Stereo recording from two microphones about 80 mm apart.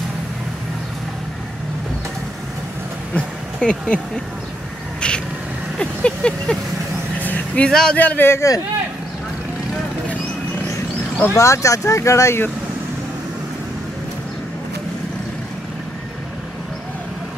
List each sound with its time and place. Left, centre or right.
3.2 s a sound: centre
5.8 s vehicle: centre
8.0 s a man's voice: left
8.3 s speech: left
11.3 s speech: left